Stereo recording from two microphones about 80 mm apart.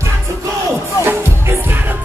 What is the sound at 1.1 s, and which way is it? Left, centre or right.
Music, right.